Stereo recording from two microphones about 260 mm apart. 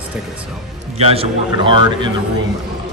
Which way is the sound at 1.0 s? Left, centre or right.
Right.